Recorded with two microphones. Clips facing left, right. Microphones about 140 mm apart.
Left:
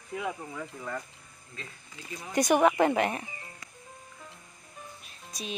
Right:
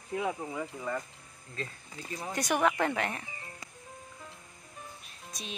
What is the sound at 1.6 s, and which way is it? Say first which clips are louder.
Speech: right 6 dB; 35° right (ahead or behind).